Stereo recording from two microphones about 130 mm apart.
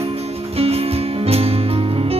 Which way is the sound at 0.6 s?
50° right (ahead or behind).